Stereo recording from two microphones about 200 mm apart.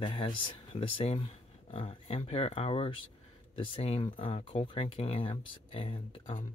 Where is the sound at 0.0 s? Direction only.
25° left (ahead or behind).